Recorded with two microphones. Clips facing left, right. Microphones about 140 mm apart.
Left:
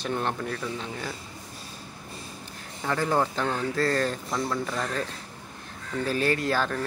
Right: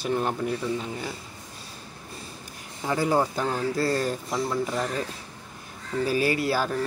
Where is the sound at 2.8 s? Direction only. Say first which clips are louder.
Right 2 dB; 10° right (ahead or behind).